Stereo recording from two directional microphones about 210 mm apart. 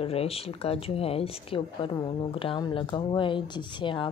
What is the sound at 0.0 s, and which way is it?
A woman's voice, 30° left (ahead or behind).